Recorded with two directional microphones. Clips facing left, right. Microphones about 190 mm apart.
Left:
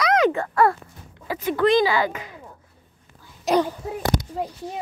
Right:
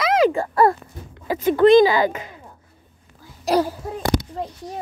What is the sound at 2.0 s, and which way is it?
Speech, 25° right (ahead or behind).